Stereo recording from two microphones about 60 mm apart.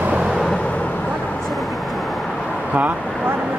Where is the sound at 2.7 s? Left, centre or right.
Right.